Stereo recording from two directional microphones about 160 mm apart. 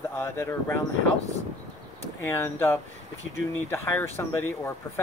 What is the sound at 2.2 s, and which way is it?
Speech, 15° left (ahead or behind).